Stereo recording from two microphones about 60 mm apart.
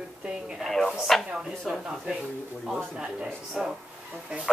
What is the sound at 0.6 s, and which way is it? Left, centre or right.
Speech, centre.